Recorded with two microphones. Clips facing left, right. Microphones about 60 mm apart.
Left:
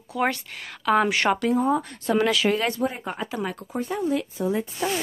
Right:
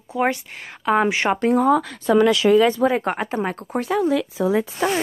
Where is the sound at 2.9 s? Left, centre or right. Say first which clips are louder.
Right 9 dB; right.